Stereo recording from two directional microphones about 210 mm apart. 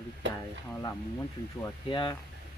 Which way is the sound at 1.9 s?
25° left (ahead or behind).